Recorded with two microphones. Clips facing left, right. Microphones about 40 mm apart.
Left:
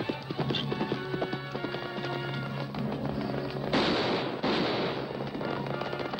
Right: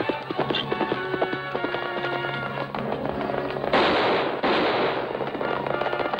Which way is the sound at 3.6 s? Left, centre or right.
Right.